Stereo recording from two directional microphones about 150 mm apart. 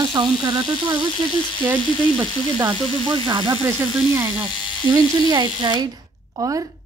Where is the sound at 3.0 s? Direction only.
30° right (ahead or behind).